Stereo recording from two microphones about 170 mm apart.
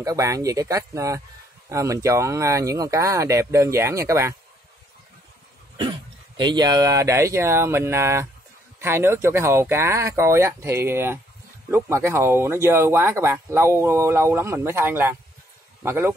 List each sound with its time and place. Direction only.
0.0 s speech: 20° right (ahead or behind)
6.3 s speech: 25° right (ahead or behind)